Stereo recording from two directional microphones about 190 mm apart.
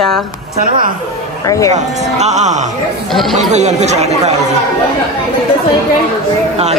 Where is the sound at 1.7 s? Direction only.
35° right (ahead or behind).